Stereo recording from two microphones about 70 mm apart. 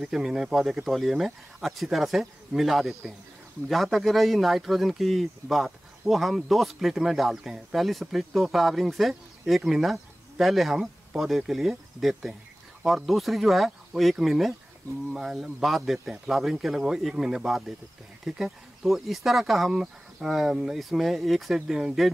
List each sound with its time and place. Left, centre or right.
0.0 s speech: centre